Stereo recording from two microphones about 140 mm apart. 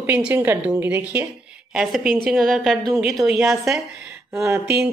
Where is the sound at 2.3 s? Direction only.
Centre (ahead or behind).